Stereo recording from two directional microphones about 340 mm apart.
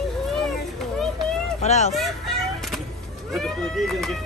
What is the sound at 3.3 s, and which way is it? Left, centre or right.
Speech, centre.